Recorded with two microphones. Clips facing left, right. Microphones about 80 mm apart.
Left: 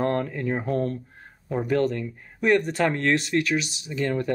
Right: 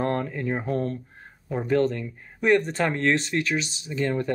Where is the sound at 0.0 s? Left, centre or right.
Right.